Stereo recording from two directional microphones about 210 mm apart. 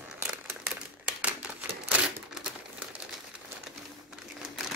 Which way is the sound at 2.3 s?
5° right (ahead or behind).